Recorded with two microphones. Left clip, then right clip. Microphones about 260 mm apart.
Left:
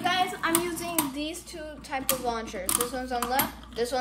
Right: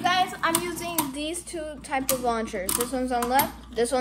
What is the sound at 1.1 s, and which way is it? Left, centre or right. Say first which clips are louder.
Speech: right 3 dB; right.